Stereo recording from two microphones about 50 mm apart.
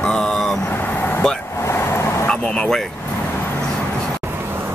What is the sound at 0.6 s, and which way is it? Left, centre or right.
Vehicle, left.